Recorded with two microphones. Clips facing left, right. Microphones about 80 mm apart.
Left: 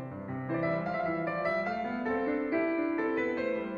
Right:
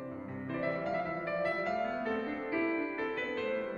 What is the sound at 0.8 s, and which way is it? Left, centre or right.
Music, centre.